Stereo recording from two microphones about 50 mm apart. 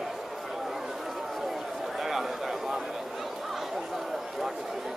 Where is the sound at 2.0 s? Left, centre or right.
Centre.